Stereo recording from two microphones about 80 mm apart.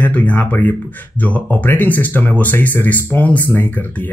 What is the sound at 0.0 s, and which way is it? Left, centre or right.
Speech, left.